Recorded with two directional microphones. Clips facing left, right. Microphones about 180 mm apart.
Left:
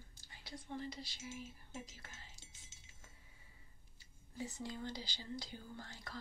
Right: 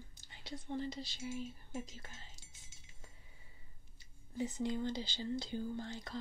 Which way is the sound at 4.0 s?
20° right (ahead or behind).